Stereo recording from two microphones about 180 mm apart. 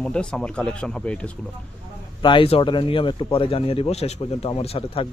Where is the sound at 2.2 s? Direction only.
30° left (ahead or behind).